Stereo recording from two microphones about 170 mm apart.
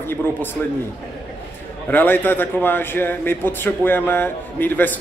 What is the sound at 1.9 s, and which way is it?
A man's voice, 10° left (ahead or behind).